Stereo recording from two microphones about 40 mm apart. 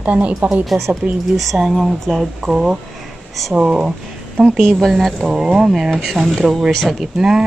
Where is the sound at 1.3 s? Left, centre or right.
Centre; by 3.9 s right.